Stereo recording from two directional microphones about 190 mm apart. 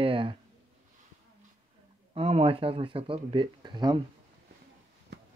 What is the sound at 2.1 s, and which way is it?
Speech, 30° right (ahead or behind).